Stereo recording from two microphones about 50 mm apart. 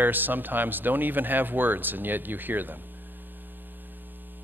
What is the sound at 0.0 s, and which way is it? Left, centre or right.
Speech, right.